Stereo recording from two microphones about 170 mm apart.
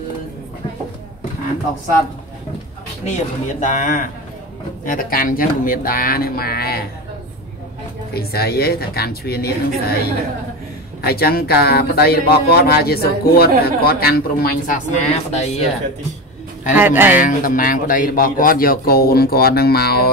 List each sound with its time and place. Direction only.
3.6 s a man's voice: 50° left (ahead or behind)
8.1 s a man's voice: 65° left (ahead or behind); by 15.7 s 40° left (ahead or behind)
16.7 s speech: 10° right (ahead or behind)
17.2 s a man's voice: 50° left (ahead or behind)